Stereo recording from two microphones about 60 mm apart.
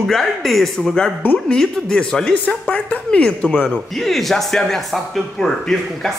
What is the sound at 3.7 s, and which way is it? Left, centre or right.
A man's voice, centre.